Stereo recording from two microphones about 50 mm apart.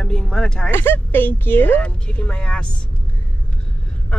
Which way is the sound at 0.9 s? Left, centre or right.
Left.